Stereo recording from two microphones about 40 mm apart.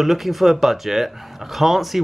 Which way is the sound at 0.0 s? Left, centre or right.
Centre.